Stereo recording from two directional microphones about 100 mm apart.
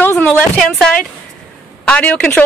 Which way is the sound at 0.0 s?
20° left (ahead or behind).